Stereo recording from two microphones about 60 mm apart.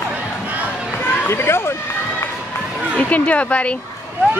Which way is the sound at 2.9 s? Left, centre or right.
Left.